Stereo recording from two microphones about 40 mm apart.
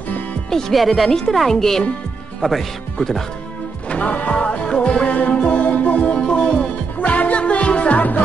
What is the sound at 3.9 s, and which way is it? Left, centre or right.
Music, left.